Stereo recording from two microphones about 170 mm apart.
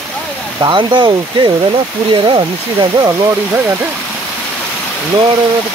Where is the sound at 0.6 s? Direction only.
30° right (ahead or behind).